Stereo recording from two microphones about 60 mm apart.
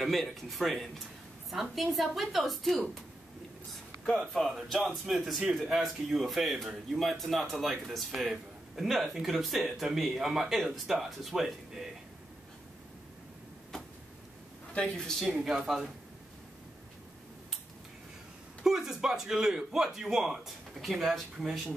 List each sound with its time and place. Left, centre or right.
0.0 s speech: centre
4.3 s speech: centre
14.7 s speech: centre
15.2 s speech: centre
18.6 s speech: centre